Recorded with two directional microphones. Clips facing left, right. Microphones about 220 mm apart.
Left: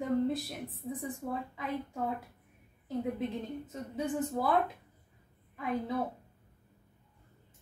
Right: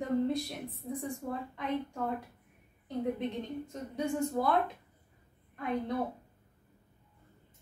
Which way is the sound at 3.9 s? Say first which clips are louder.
Right 1 dB; 5° left (ahead or behind).